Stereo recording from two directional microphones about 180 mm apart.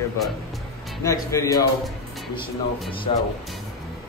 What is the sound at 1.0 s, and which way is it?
Speech, 15° left (ahead or behind).